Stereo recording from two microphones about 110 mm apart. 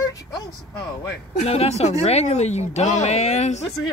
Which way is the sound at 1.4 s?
70° left (ahead or behind).